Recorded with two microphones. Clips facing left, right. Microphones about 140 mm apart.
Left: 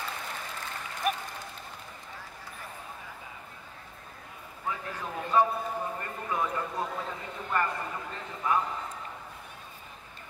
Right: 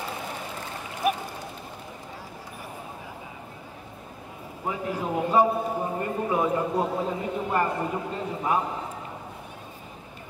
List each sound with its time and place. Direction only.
1.0 s a sound: 5° right (ahead or behind)
4.6 s a man's voice: 20° right (ahead or behind)
5.8 s speech: 25° right (ahead or behind)
6.7 s a man's voice: 35° right (ahead or behind)
7.0 s a man's voice: 20° right (ahead or behind)